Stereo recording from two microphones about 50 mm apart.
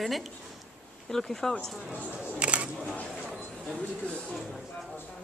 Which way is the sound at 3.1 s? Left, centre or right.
Centre.